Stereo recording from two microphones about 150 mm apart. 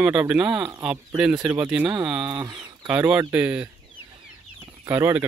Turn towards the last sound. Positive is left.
turn(degrees=-15)  # may be behind; listen again after turning